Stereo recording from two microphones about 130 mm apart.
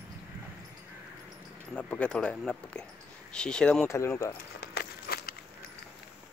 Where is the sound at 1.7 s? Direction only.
10° left (ahead or behind).